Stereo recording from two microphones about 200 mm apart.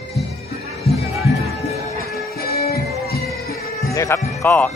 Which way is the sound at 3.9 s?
15° left (ahead or behind).